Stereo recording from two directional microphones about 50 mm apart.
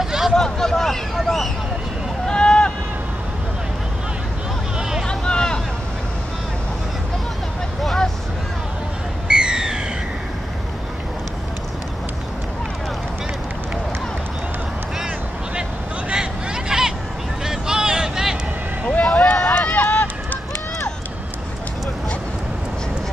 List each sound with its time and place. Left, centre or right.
0.0 s vehicle: centre
0.3 s speech: centre
2.2 s run: centre
5.0 s vehicle: centre
7.8 s vehicle: centre
9.3 s owl: centre
16.1 s hubbub: centre
17.5 s a sound: centre
18.9 s vehicle: left
19.5 s run: left